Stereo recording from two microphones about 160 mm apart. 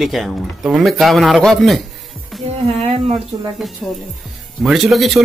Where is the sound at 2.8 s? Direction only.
40° right (ahead or behind).